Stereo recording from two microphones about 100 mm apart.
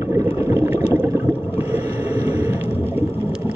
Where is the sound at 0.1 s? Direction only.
30° right (ahead or behind).